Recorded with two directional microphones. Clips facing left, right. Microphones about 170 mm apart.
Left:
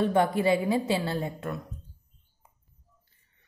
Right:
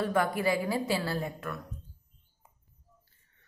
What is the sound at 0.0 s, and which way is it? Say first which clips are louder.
A woman's voice: left 4 dB; 25° left (ahead or behind).